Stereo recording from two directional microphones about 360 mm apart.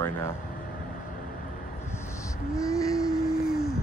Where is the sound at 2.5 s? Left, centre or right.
Centre.